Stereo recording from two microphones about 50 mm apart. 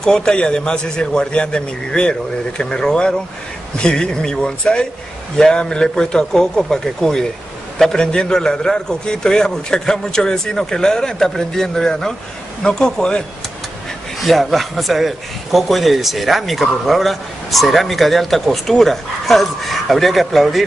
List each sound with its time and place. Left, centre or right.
0.0 s a man's voice: centre
14.2 s speech: centre